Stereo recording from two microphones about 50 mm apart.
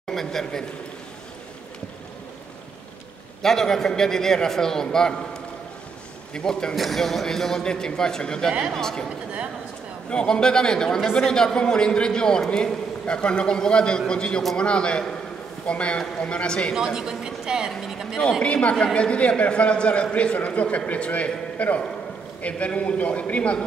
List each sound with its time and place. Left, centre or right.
0.1 s a man's voice: centre
3.4 s a man's voice: centre
6.7 s a man's voice: centre
10.0 s a man's voice: centre
16.7 s a woman's voice: centre
18.4 s a man's voice: left